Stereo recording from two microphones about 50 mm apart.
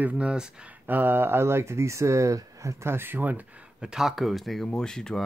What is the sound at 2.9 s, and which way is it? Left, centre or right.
Speech, right.